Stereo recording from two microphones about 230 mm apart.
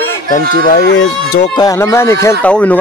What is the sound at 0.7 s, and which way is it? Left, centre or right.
Speech, left.